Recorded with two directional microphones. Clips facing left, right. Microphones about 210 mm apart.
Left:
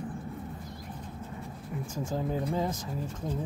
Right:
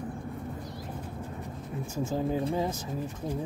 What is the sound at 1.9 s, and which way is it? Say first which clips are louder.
Speech: right 3 dB; 10° right (ahead or behind).